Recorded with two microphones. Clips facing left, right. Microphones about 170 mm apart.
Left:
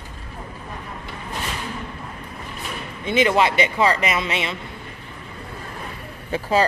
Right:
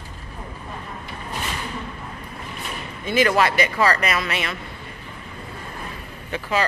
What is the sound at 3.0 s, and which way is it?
Speech, 20° left (ahead or behind).